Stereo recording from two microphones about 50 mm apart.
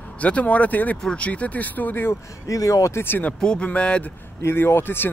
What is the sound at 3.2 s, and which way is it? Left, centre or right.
Speech, left.